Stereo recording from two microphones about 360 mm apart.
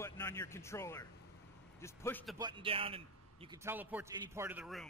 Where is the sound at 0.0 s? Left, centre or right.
Centre.